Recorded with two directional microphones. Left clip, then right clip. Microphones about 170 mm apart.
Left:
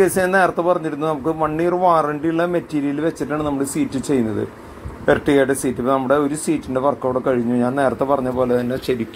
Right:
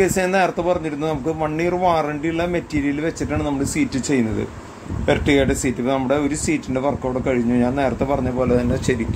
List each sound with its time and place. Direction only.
0.0 s speech: centre (ahead or behind)